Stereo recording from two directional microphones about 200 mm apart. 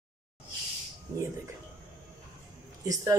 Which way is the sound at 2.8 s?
15° right (ahead or behind).